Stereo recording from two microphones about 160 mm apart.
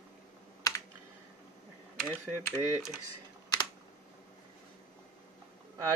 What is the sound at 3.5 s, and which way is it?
Computer keyboard, 25° left (ahead or behind).